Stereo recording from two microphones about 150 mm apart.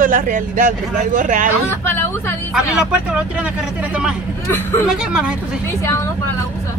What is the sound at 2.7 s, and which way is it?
Speech, 10° right (ahead or behind).